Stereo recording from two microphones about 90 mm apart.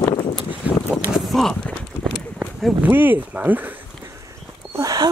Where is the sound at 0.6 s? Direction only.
15° right (ahead or behind).